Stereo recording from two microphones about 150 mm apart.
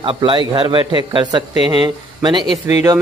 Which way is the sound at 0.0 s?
35° right (ahead or behind).